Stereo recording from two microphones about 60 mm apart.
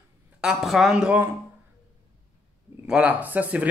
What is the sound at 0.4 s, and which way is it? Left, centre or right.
Speech, centre.